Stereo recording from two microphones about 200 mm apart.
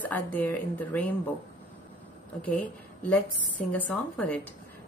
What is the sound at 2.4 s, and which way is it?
A woman's voice, 5° left (ahead or behind).